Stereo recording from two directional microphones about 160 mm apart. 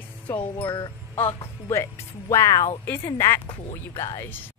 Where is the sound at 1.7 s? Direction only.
20° left (ahead or behind).